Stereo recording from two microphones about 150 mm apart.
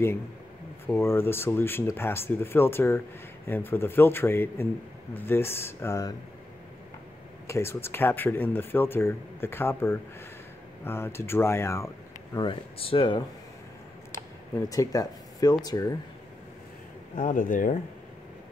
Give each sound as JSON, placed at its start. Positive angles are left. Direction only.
{"t": 0.8, "sound": "speech", "side_deg": 15}
{"t": 7.4, "sound": "speech", "side_deg": 20}
{"t": 12.4, "sound": "speech", "side_deg": 35}
{"t": 14.7, "sound": "speech", "side_deg": 25}
{"t": 17.1, "sound": "speech", "side_deg": 60}